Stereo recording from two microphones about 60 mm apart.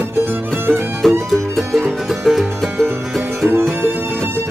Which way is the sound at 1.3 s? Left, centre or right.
Centre.